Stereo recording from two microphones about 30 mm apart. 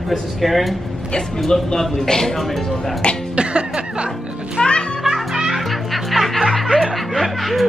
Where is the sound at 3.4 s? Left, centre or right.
Right.